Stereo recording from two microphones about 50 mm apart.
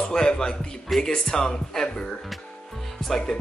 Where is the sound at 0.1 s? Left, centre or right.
Centre.